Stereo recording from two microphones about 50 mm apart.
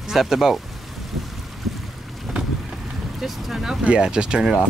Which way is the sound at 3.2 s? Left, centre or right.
Centre.